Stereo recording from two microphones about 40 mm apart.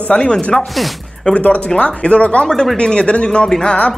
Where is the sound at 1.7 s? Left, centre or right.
Left.